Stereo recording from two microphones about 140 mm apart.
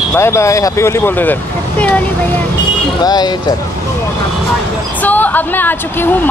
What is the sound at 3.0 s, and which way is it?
Speech, 30° left (ahead or behind).